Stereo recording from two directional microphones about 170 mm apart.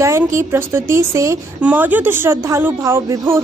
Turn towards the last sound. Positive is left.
turn(degrees=-15)  # may be behind; listen again after turning